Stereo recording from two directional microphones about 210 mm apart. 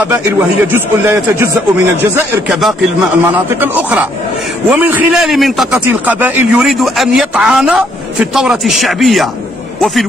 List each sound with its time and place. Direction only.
0.7 s a man's voice: 10° right (ahead or behind)